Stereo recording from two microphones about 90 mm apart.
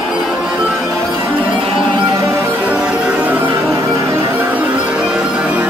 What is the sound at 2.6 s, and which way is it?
Music, 15° right (ahead or behind).